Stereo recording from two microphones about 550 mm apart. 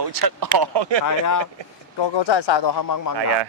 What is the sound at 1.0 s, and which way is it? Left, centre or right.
Speech, left.